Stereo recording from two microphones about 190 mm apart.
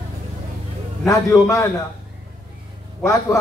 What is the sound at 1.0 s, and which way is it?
Speech, 15° left (ahead or behind).